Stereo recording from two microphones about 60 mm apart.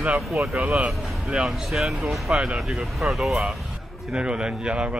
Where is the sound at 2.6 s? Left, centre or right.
Centre.